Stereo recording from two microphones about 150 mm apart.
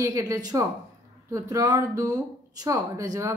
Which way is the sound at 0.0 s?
20° right (ahead or behind).